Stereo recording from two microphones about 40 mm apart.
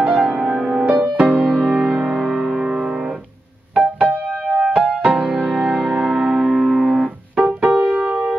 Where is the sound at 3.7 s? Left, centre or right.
Right.